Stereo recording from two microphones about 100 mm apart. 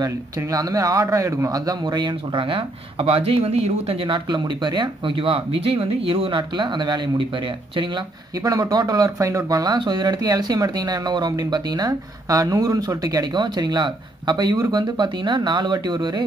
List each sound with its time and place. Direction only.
0.4 s speech: 35° right (ahead or behind); by 8.0 s 55° right (ahead or behind)
8.4 s speech: 40° right (ahead or behind)